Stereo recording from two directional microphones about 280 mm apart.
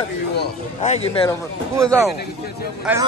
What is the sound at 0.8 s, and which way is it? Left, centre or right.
Speech, left.